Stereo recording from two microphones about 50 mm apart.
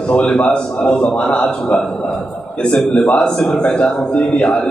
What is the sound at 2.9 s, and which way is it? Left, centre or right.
A man's voice, left.